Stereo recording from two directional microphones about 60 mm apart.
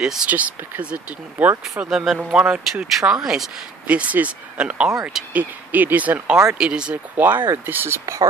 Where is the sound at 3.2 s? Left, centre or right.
Centre.